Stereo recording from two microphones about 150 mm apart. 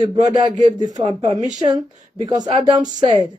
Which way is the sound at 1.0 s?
50° right (ahead or behind).